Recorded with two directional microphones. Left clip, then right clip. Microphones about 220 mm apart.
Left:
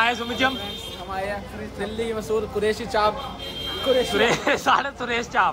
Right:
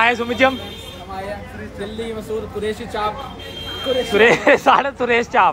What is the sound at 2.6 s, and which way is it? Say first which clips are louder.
Speech: left 2 dB; 30° left (ahead or behind).